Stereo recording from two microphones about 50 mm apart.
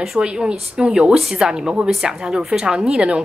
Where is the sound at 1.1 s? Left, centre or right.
Centre.